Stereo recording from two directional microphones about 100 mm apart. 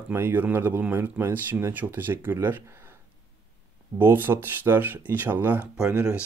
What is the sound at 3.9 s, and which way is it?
Speech, 20° right (ahead or behind).